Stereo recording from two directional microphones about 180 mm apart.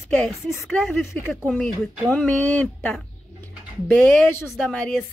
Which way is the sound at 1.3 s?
Centre (ahead or behind).